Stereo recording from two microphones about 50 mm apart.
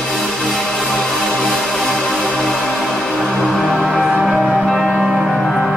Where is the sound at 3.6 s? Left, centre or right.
Left.